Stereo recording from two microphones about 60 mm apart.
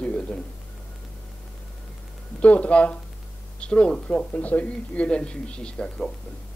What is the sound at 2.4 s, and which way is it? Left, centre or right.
A man's voice, left.